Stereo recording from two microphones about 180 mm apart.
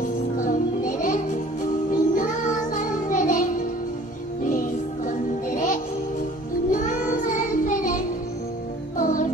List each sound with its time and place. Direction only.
0.4 s music: 50° left (ahead or behind)
6.7 s child singing: 45° left (ahead or behind)
8.9 s music: 45° left (ahead or behind)